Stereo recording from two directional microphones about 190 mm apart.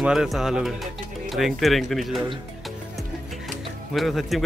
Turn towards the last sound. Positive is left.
turn(degrees=0)  # may be behind; listen again after turning